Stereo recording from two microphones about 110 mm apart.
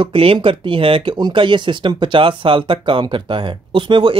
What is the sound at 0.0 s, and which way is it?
Speech, 55° right (ahead or behind).